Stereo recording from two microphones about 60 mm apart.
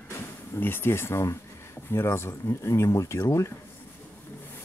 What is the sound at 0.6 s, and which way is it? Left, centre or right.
Speech, left.